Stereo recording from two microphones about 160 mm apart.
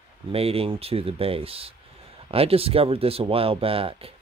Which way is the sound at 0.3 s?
40° right (ahead or behind).